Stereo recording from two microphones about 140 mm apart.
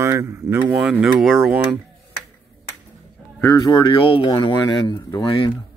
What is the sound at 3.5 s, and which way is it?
Speech, 30° left (ahead or behind).